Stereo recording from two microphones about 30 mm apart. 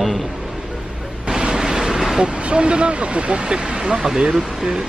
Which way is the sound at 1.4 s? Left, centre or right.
Right.